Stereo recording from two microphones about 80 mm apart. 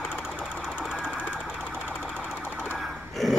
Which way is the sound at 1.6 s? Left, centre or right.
Left.